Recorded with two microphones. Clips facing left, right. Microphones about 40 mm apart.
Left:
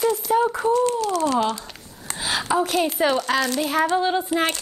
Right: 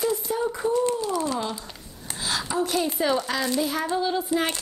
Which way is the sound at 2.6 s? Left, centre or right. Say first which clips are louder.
Left 3 dB; left.